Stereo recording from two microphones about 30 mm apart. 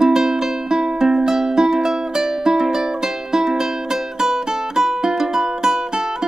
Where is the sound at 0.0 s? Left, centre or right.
Centre.